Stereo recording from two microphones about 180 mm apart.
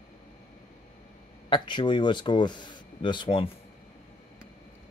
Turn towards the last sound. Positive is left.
turn(degrees=25)  # may be behind; listen again after turning